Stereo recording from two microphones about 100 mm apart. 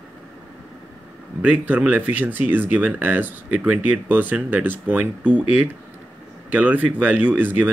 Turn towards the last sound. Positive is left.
turn(degrees=-15)  # may be behind; listen again after turning